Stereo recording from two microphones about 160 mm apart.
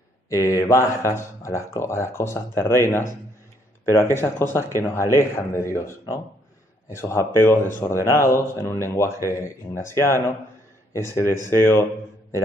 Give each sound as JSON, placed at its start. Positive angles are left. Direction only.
{"t": 0.3, "sound": "speech", "side_deg": 20}